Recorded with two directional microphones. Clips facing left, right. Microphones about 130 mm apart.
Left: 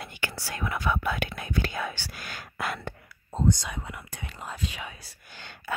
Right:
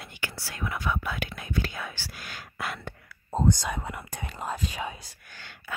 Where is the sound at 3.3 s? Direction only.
50° right (ahead or behind).